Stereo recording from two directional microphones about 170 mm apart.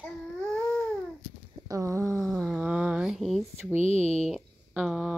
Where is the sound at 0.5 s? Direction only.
5° left (ahead or behind).